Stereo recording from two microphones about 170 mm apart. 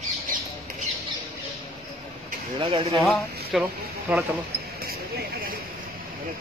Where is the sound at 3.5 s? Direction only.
5° right (ahead or behind).